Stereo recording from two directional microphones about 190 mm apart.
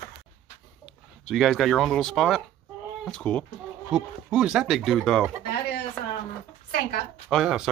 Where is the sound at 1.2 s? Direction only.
Centre (ahead or behind).